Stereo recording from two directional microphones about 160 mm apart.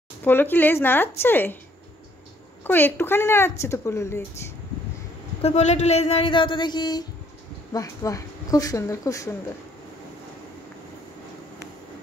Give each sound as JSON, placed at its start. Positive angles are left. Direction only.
{"t": 0.2, "sound": "speech", "side_deg": 10}
{"t": 2.6, "sound": "speech", "side_deg": 10}
{"t": 5.4, "sound": "speech", "side_deg": 45}